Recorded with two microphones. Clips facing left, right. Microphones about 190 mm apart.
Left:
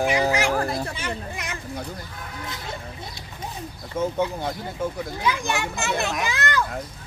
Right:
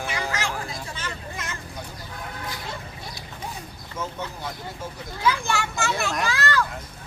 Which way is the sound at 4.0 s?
55° left (ahead or behind).